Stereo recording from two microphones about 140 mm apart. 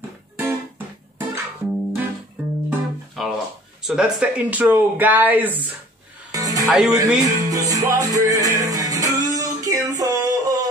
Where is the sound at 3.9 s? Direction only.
5° right (ahead or behind).